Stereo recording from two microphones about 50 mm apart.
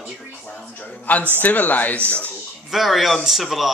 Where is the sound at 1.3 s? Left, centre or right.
Left.